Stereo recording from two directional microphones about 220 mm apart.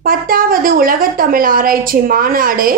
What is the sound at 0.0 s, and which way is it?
A woman's voice, 40° right (ahead or behind).